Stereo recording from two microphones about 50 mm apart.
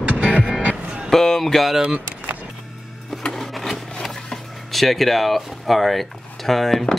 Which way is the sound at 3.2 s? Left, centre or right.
Centre.